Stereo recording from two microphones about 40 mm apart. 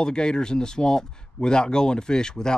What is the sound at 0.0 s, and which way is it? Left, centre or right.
Speech, centre.